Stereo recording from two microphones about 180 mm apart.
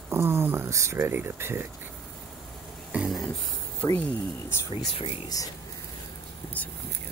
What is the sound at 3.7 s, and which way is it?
Speech, 10° left (ahead or behind).